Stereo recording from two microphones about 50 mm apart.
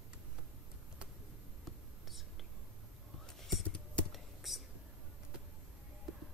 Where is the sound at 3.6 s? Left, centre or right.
Left.